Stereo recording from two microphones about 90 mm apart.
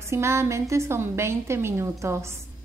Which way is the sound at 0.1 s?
30° right (ahead or behind).